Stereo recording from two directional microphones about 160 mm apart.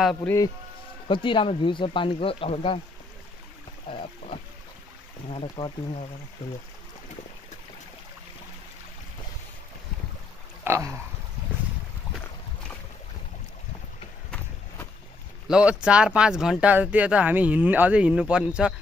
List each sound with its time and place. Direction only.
0.0 s speech: centre (ahead or behind)
1.0 s speech: 30° left (ahead or behind)
5.3 s speech: 40° left (ahead or behind)
10.6 s a sound: 15° right (ahead or behind)
15.4 s speech: 5° right (ahead or behind)